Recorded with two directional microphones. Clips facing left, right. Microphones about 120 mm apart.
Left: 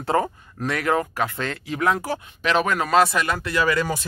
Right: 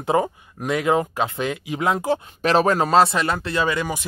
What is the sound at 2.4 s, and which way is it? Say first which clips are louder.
Speech: right 3 dB; 35° right (ahead or behind).